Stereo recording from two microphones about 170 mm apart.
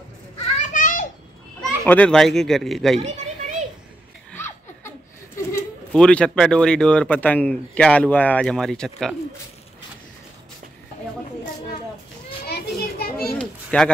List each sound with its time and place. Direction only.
0.6 s children playing: 50° left (ahead or behind)
1.9 s speech: 5° left (ahead or behind)
3.0 s children playing: 40° right (ahead or behind)
4.3 s laughter: 15° left (ahead or behind)
5.9 s speech: 5° left (ahead or behind)
12.4 s children playing: 65° left (ahead or behind)
13.2 s children playing: 5° left (ahead or behind)